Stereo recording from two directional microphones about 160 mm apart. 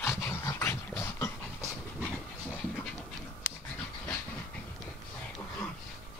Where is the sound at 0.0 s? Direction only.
15° left (ahead or behind).